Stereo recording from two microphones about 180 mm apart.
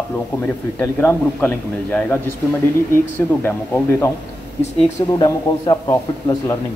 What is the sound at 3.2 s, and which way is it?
Speech, 15° left (ahead or behind).